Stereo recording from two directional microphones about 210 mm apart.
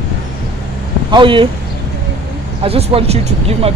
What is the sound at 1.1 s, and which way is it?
Speech, 25° right (ahead or behind).